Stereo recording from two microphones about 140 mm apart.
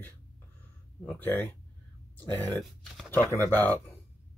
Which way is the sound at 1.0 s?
15° left (ahead or behind).